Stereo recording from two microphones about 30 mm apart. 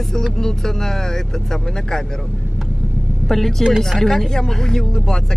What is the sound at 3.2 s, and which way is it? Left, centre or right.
Speech, centre.